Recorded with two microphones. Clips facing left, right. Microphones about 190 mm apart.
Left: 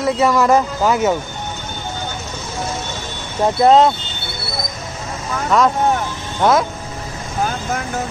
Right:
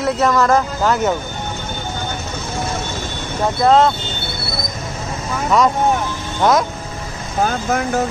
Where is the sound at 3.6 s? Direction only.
15° left (ahead or behind).